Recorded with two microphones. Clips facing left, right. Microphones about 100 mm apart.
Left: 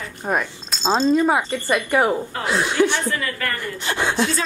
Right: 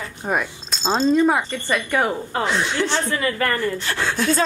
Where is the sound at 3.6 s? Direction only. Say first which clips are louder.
Right 1 dB; 15° left (ahead or behind).